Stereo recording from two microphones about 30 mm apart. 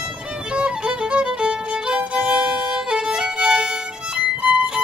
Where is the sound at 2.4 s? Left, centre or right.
Centre.